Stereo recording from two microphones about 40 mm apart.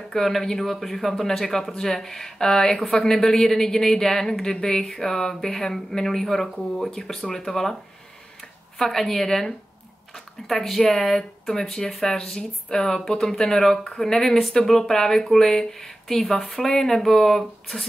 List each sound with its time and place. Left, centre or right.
0.1 s a woman's voice: centre
8.7 s a woman's voice: centre